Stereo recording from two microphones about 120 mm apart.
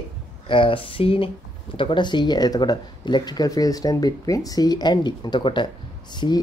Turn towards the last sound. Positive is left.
turn(degrees=40)  # may be behind; listen again after turning